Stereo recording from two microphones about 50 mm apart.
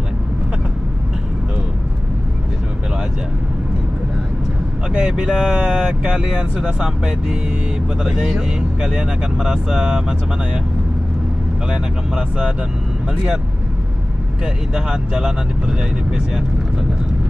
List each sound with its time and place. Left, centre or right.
4.9 s speech: centre
11.7 s speech: centre
14.4 s speech: centre